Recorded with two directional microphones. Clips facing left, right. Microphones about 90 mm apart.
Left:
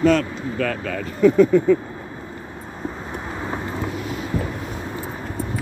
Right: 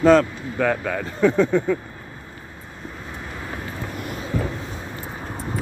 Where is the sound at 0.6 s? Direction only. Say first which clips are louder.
Right 4 dB; 15° right (ahead or behind).